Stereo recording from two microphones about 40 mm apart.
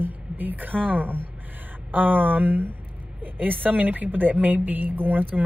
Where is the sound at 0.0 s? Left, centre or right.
Right.